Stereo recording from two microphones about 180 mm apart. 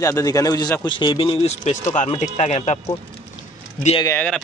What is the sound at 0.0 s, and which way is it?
Speech, 20° left (ahead or behind).